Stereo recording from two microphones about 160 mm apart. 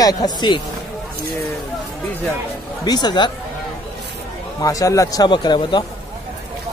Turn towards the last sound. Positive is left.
turn(degrees=30)  # may be behind; listen again after turning